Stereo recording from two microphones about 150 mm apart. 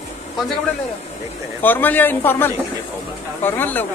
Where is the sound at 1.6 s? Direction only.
10° left (ahead or behind).